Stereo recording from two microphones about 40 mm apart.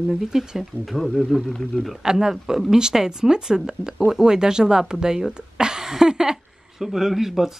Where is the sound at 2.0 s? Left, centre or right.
Centre.